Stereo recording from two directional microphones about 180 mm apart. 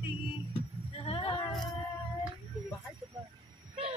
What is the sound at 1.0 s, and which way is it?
Music, 30° left (ahead or behind).